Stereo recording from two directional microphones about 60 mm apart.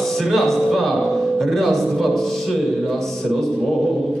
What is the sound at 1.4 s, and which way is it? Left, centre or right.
Speech, centre.